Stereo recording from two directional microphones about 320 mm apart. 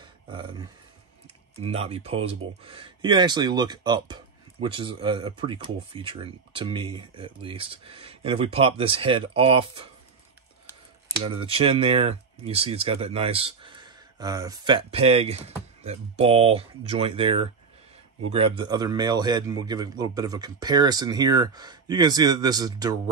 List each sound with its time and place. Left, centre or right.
0.0 s a sound: centre
1.6 s speech: centre
11.2 s speech: centre